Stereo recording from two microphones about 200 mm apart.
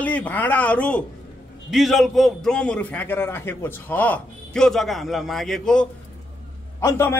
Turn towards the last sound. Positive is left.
turn(degrees=10)  # may be behind; listen again after turning